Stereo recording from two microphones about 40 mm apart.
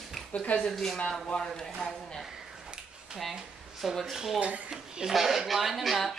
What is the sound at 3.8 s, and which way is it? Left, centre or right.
Cutlery, centre.